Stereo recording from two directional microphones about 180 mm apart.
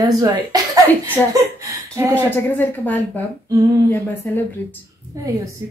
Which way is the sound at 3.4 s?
20° right (ahead or behind).